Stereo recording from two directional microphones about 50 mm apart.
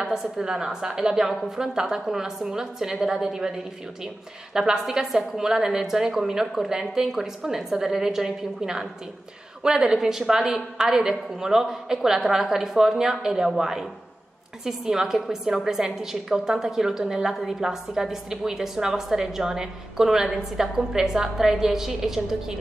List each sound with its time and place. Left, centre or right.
0.0 s a woman's voice: centre